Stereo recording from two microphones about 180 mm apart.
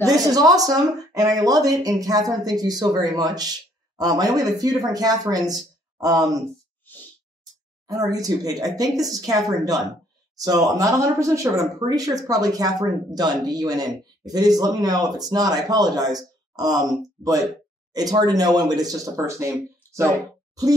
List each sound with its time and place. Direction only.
0.0 s speech: 20° right (ahead or behind)
7.8 s speech: 20° right (ahead or behind)